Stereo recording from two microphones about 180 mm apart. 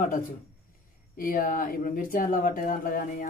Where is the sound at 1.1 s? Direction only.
50° left (ahead or behind).